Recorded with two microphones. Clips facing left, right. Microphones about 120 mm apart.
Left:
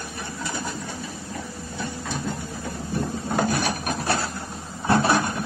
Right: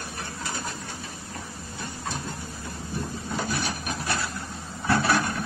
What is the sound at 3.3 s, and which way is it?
Wood, 50° left (ahead or behind).